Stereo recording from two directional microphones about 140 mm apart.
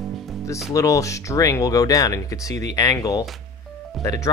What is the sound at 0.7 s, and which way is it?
Speech, 25° left (ahead or behind).